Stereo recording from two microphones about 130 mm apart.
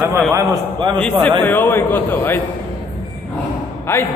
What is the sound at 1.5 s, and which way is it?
Speech, 15° left (ahead or behind).